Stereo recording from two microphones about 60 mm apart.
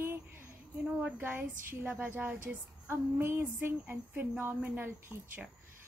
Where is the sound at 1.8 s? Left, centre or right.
Right.